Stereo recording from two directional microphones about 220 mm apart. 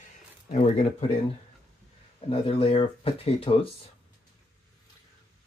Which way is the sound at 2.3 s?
25° left (ahead or behind).